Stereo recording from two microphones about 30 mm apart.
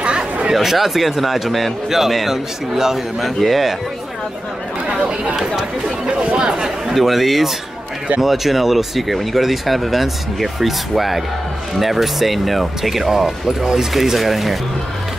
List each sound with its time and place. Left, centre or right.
0.0 s chatter: right
0.5 s a man's voice: centre
3.2 s speech: centre
4.9 s speech: right
6.9 s speech: centre
13.5 s speech: centre
13.9 s speech: centre